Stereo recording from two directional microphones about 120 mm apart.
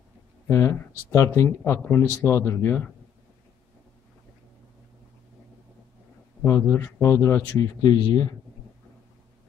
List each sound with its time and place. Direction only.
0.5 s speech: 25° left (ahead or behind)
6.4 s speech: 20° left (ahead or behind)
7.8 s speech: 35° left (ahead or behind)